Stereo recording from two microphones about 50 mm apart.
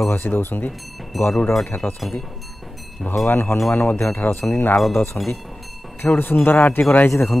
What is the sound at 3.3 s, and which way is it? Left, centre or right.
Speech, left.